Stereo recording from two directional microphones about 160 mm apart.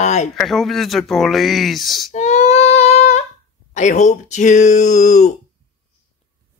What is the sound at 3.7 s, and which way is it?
Speech, 50° left (ahead or behind).